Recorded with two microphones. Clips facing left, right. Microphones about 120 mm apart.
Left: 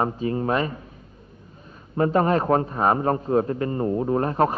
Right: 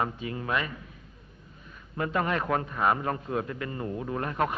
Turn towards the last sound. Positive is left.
turn(degrees=35)  # may be behind; listen again after turning